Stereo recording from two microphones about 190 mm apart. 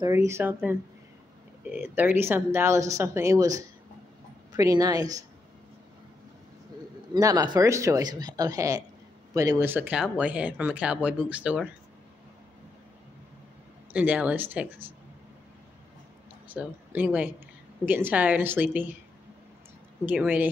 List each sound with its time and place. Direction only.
0.0 s a woman's voice: 15° right (ahead or behind)
1.7 s a woman's voice: 10° right (ahead or behind)
7.2 s a woman's voice: 20° right (ahead or behind)
13.9 s a woman's voice: 5° right (ahead or behind)
16.4 s a woman's voice: 10° right (ahead or behind)
20.1 s a woman's voice: 10° right (ahead or behind)